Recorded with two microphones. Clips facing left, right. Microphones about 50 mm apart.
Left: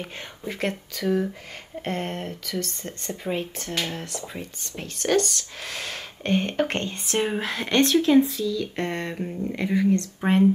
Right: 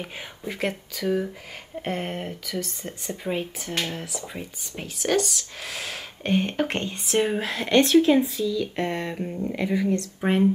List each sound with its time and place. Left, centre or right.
0.0 s speech: centre